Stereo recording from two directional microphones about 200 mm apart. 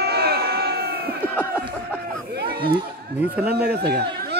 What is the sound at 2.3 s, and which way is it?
Speech, 50° right (ahead or behind).